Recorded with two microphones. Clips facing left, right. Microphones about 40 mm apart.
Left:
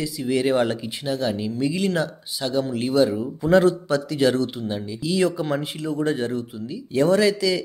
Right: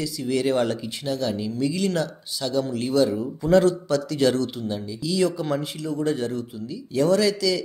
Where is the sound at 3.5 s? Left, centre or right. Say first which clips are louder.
Left 1 dB; left.